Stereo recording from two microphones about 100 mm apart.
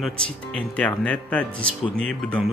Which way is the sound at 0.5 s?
10° left (ahead or behind).